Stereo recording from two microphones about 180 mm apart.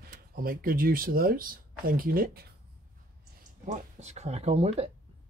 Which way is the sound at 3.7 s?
40° right (ahead or behind).